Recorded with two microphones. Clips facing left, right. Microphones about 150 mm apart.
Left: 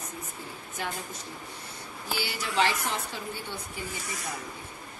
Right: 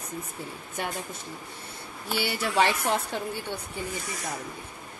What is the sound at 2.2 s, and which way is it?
Speech, 60° right (ahead or behind).